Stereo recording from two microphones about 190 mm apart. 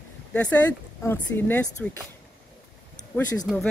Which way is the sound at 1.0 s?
10° left (ahead or behind).